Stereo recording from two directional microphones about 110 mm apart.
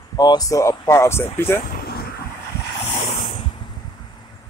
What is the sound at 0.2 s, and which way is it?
Speech, 35° left (ahead or behind).